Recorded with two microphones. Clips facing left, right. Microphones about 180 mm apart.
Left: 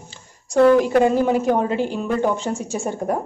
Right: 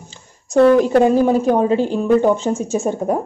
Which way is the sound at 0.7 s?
20° right (ahead or behind).